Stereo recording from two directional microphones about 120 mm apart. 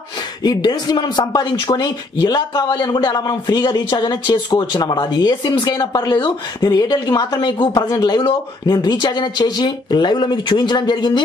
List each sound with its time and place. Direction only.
0.4 s speech: 35° left (ahead or behind)